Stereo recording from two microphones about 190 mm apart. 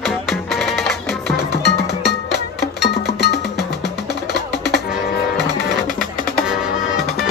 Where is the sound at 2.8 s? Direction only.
60° left (ahead or behind).